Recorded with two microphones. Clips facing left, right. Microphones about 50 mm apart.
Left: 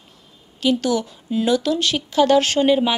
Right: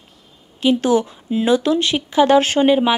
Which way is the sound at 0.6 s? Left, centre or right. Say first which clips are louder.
Right 4 dB; right.